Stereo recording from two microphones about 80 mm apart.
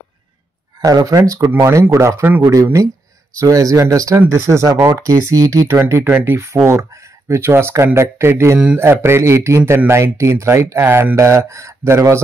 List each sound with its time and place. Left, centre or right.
0.7 s speech: right
2.2 s speech: right
2.5 s speech: right
6.0 s speech: right